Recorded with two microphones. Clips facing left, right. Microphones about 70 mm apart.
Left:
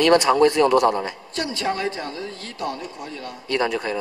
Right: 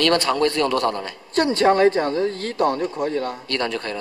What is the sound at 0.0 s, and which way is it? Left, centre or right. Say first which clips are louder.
Speech: left 3 dB; centre.